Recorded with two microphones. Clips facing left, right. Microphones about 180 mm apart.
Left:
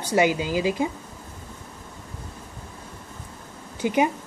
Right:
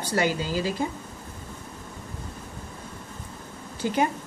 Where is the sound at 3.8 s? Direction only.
15° left (ahead or behind).